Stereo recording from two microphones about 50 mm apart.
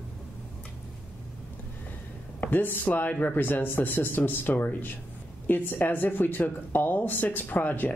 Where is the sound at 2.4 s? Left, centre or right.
Left.